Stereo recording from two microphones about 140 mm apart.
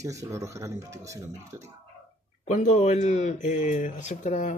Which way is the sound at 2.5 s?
60° left (ahead or behind).